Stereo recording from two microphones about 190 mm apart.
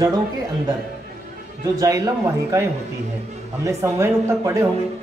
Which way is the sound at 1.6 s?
20° right (ahead or behind).